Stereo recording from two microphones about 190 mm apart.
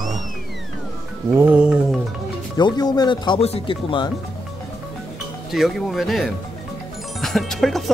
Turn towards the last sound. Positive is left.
turn(degrees=0)  # may be behind; listen again after turning